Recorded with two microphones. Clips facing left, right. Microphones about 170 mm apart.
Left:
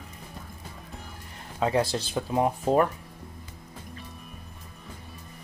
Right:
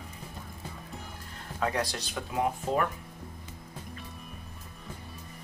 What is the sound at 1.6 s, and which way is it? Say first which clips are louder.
Speech: left 6 dB; 25° left (ahead or behind).